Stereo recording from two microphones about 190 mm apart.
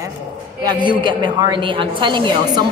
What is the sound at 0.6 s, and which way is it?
A woman's voice, 25° right (ahead or behind).